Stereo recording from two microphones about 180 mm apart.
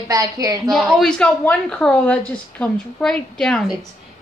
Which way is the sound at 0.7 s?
Centre (ahead or behind).